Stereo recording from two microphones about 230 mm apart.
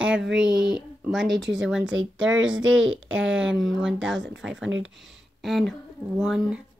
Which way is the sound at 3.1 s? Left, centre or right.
Centre.